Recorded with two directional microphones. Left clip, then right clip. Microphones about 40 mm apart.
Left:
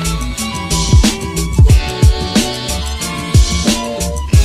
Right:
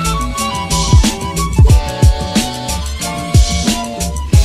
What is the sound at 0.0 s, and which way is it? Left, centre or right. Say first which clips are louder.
Music: right 4 dB; centre.